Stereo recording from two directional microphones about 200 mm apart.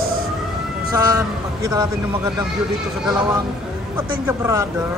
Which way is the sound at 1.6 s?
15° right (ahead or behind).